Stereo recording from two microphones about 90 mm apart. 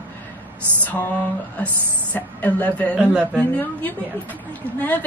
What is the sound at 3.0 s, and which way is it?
Speech, 15° right (ahead or behind).